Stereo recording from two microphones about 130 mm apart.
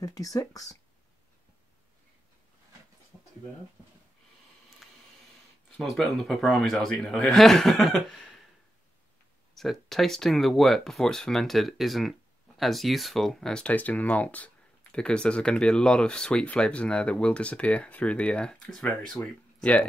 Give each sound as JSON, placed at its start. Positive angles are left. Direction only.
{"t": 0.0, "sound": "speech", "side_deg": 25}
{"t": 5.8, "sound": "speech", "side_deg": 0}
{"t": 9.6, "sound": "speech", "side_deg": 0}